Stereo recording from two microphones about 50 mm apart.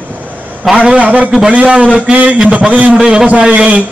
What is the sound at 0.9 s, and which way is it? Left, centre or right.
Speech, right.